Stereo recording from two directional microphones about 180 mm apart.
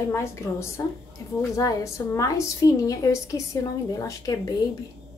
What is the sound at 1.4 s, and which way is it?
A woman's voice, 15° left (ahead or behind).